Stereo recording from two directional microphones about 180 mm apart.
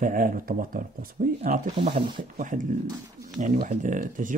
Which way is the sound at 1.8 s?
30° right (ahead or behind).